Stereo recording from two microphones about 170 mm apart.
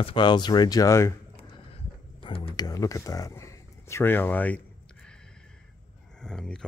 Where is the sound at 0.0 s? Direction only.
30° left (ahead or behind).